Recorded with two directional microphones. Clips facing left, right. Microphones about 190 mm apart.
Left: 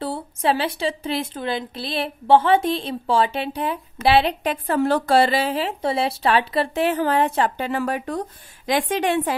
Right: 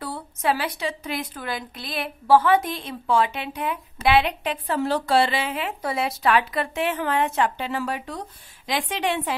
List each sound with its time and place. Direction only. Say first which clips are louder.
0.0 s a woman's voice: left 3 dB; 30° left (ahead or behind); by 9.3 s 45° left (ahead or behind)